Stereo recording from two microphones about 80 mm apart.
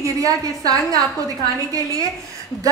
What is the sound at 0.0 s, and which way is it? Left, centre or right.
Speech, right.